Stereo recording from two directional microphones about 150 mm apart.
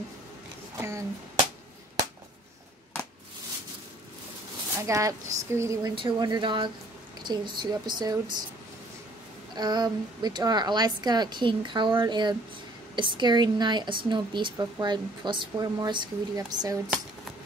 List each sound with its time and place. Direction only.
0.7 s a sound: 20° right (ahead or behind)
4.7 s a woman's voice: 20° right (ahead or behind)
5.9 s a woman's voice: 30° right (ahead or behind)
9.6 s a woman's voice: 30° right (ahead or behind)